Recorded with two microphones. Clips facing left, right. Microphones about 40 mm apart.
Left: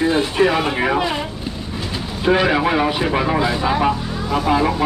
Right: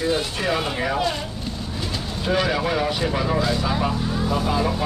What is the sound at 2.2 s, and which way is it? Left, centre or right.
Speech, left.